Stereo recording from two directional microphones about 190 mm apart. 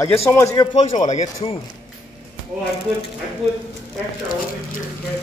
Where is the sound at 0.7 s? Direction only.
40° left (ahead or behind).